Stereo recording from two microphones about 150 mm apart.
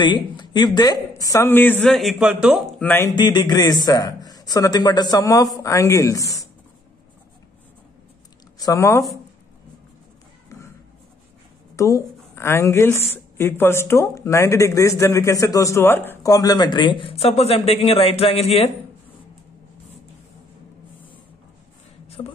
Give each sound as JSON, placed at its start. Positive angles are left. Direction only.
{"t": 0.0, "sound": "a woman's voice", "side_deg": 30}
{"t": 1.9, "sound": "a man's voice", "side_deg": 0}
{"t": 2.8, "sound": "speech", "side_deg": 15}
{"t": 3.1, "sound": "a woman's voice", "side_deg": 30}
{"t": 8.5, "sound": "a woman's voice", "side_deg": 25}
{"t": 11.7, "sound": "a woman's voice", "side_deg": 20}
{"t": 22.2, "sound": "speech", "side_deg": 30}